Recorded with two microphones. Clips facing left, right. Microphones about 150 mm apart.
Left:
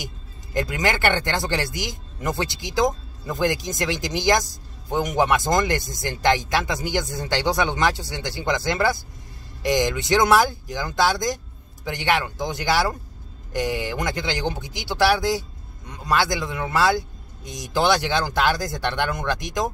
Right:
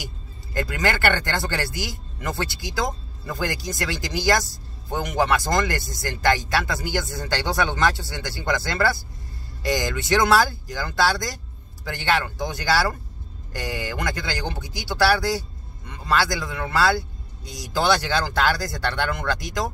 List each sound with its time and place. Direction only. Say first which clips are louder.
0.0 s speech: left 1 dB; 20° left (ahead or behind)